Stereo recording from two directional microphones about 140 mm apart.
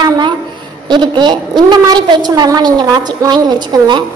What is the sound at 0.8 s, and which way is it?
A woman's voice, 30° right (ahead or behind).